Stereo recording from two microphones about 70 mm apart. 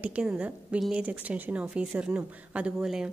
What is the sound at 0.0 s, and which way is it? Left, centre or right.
A woman's voice, centre.